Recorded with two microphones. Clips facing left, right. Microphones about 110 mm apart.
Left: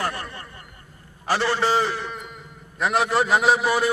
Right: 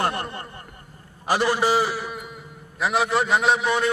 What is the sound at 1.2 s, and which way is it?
A man's voice, 15° right (ahead or behind).